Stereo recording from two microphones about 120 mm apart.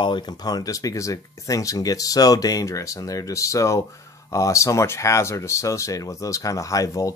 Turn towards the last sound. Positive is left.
turn(degrees=30)  # may be behind; listen again after turning